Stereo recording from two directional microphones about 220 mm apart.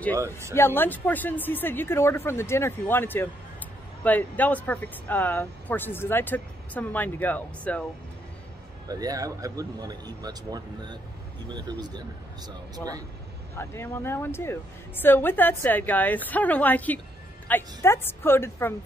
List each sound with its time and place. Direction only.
0.2 s speech: 10° right (ahead or behind)
0.6 s speech: 10° left (ahead or behind)
8.8 s speech: 15° right (ahead or behind)
12.7 s speech: 15° right (ahead or behind)
13.6 s speech: 10° left (ahead or behind)